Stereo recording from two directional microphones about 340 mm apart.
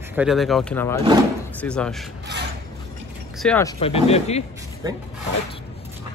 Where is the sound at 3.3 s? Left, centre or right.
Centre.